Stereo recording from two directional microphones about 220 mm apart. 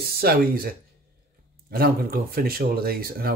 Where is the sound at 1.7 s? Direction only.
40° right (ahead or behind).